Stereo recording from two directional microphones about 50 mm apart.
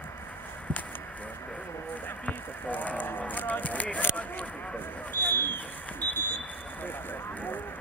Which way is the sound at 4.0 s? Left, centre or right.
Left.